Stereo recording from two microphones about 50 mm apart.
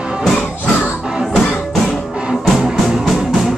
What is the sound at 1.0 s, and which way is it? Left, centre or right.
Music, centre.